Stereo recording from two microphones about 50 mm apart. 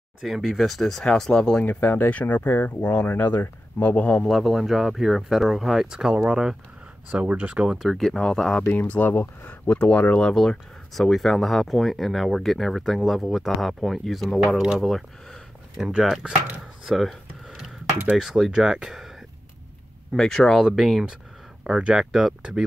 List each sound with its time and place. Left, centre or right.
0.2 s speech: centre
1.8 s speech: left
4.2 s speech: centre
6.1 s speech: right
7.6 s speech: centre
8.7 s speech: left
9.7 s speech: left
10.2 s speech: centre
16.0 s speech: centre
16.8 s a sound: centre
18.1 s speech: centre
18.5 s speech: centre
20.2 s speech: centre
20.6 s speech: centre